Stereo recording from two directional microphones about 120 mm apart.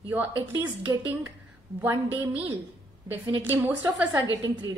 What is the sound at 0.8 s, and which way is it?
Speech, 30° right (ahead or behind).